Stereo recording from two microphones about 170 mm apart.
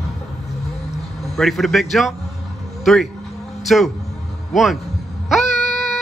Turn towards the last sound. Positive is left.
turn(degrees=0)  # may be behind; listen again after turning